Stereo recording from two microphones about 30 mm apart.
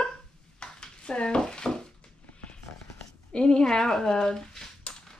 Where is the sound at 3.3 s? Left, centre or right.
Left.